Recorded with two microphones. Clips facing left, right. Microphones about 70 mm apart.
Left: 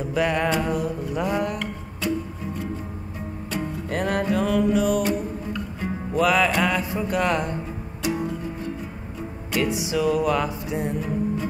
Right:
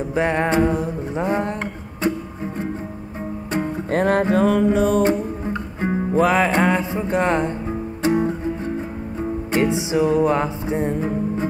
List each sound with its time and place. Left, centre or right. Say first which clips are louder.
0.1 s music: right 3 dB; right